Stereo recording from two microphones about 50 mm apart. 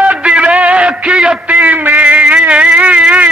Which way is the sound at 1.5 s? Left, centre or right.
Right.